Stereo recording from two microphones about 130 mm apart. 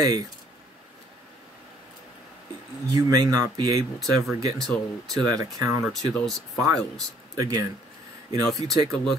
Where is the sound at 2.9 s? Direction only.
25° right (ahead or behind).